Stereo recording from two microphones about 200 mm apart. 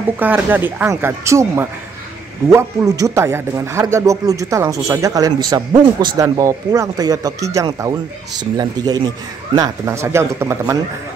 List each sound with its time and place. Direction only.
0.2 s a man's voice: 10° right (ahead or behind)